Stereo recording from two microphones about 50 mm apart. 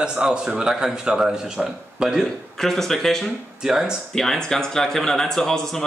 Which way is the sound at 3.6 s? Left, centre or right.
Centre.